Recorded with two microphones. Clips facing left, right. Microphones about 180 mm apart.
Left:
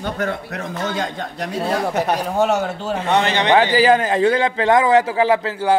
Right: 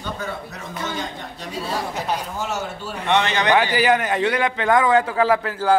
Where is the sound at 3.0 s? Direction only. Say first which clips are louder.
Left 2 dB; 35° left (ahead or behind).